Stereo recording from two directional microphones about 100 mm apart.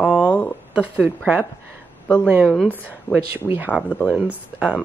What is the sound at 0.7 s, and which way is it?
Speech, 15° right (ahead or behind).